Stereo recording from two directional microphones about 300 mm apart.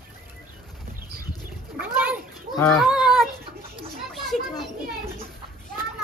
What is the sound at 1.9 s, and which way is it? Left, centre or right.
Children playing, centre.